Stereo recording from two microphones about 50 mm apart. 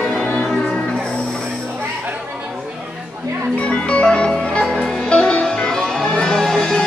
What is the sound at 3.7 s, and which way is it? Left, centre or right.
Music, left.